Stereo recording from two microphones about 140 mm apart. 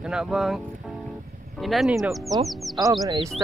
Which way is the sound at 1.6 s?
Centre (ahead or behind).